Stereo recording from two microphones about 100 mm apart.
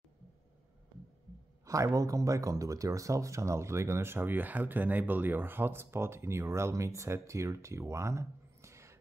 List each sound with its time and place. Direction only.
1.7 s speech: 35° right (ahead or behind)